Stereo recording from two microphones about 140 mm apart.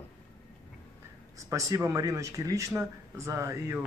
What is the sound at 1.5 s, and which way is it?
Speech, 25° right (ahead or behind).